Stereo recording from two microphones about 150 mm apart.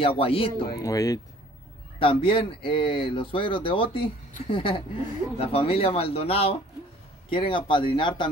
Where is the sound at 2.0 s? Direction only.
35° left (ahead or behind).